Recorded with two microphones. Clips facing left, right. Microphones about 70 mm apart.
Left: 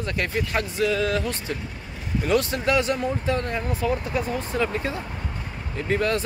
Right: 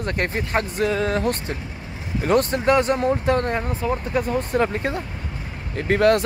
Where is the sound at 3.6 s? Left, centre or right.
Right.